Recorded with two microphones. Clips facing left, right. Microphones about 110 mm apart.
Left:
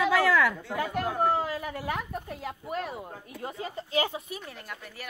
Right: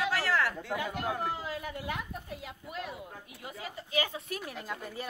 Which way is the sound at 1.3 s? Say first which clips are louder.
Left 8 dB; 50° left (ahead or behind).